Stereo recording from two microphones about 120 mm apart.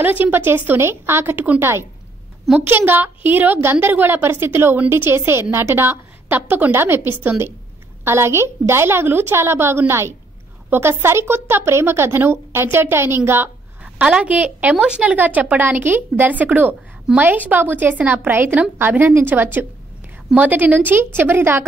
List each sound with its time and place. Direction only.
0.0 s a woman's voice: 15° right (ahead or behind)